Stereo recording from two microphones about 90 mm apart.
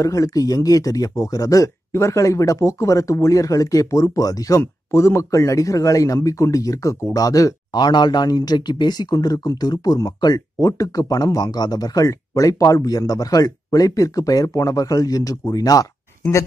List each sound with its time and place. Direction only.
0.0 s speech: 40° left (ahead or behind)
4.6 s speech: 30° left (ahead or behind)